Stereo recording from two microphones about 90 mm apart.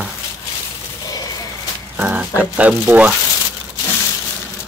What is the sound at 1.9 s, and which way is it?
Speech, 20° right (ahead or behind).